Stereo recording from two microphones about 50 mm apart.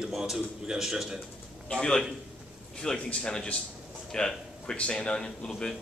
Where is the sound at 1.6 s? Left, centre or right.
Centre.